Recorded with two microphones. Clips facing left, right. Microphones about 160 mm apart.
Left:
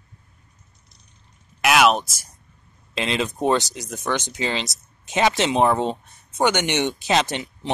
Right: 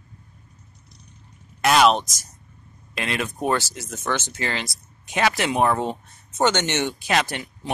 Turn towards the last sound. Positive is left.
turn(degrees=20)  # may be behind; listen again after turning